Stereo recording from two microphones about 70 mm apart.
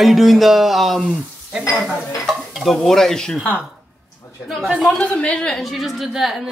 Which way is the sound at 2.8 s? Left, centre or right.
Centre.